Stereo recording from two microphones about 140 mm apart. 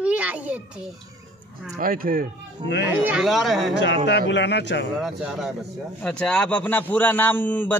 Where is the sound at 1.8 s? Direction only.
90° right.